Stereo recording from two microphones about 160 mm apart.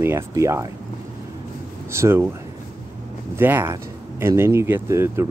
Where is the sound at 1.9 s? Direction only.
15° right (ahead or behind).